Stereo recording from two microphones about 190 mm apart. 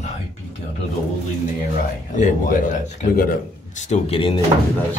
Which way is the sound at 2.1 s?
40° left (ahead or behind).